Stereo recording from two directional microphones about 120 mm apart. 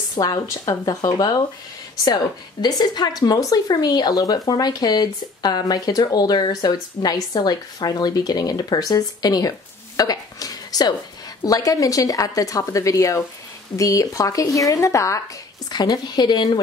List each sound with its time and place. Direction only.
0.1 s a woman's voice: 30° left (ahead or behind)